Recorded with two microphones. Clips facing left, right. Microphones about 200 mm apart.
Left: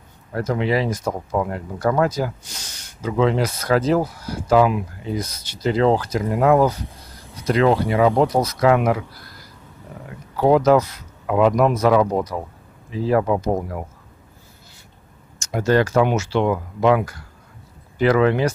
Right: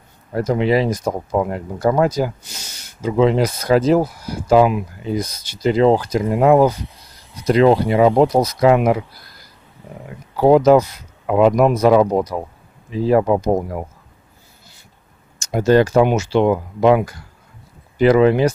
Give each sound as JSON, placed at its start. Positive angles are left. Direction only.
{"t": 0.3, "sound": "speech", "side_deg": -20}
{"t": 10.3, "sound": "speech", "side_deg": -20}
{"t": 15.3, "sound": "speech", "side_deg": -15}